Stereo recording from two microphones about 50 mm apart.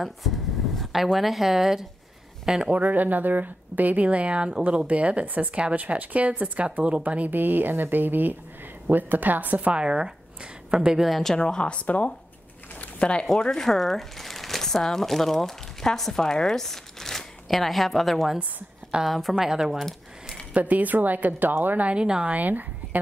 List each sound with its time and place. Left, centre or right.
1.1 s speech: centre
2.7 s speech: right; by 11.1 s centre
11.1 s a woman's voice: centre
11.3 s a woman's voice: centre
19.3 s speech: centre
19.8 s a sound: centre
20.5 s a woman's voice: right
21.8 s speech: centre
22.3 s a woman's voice: right